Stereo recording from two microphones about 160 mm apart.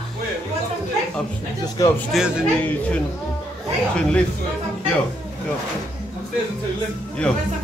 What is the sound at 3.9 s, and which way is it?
Speech, 5° left (ahead or behind).